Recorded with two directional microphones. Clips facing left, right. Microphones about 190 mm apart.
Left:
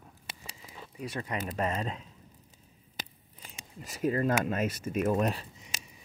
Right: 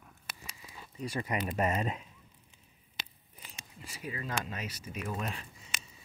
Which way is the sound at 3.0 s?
45° left (ahead or behind).